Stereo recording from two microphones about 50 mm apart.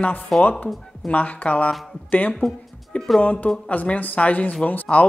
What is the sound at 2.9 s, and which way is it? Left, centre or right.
A woman's voice, left.